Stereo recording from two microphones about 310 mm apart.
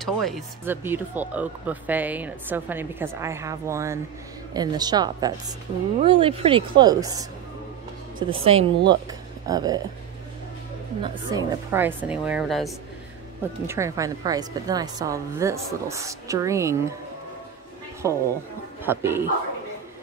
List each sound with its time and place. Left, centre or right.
0.0 s speech: centre
11.0 s a woman's voice: centre
18.0 s speech: centre